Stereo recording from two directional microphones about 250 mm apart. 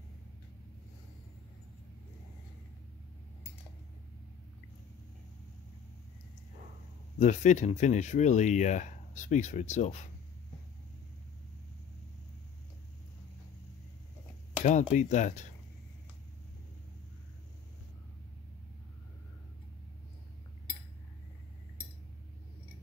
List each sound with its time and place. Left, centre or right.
7.2 s speech: left
14.6 s speech: left